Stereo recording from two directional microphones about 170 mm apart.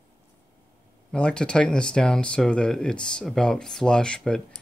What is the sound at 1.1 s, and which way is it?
Speech, 5° left (ahead or behind).